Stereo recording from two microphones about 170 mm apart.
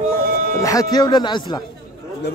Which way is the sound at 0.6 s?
20° left (ahead or behind).